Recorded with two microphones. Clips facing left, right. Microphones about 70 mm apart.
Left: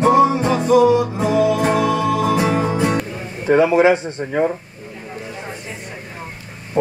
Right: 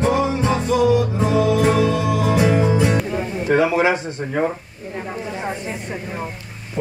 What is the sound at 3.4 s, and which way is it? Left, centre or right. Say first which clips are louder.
Speech: left 4 dB; left.